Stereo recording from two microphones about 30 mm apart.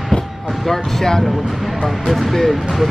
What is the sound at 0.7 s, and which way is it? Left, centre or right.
Speech, centre.